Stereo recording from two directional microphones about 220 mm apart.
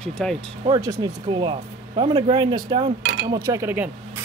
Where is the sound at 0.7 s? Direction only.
20° right (ahead or behind).